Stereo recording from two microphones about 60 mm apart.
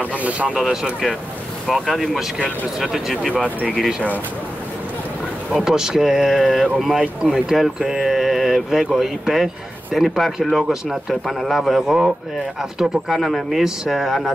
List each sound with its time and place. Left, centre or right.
0.2 s speech: right
1.7 s speech: centre
5.5 s speech: centre